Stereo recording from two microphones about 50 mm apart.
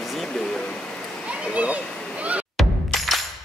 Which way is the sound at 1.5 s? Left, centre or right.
Right.